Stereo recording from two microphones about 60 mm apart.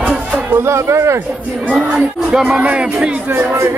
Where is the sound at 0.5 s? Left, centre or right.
Right.